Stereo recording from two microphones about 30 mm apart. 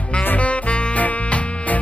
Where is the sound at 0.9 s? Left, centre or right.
Left.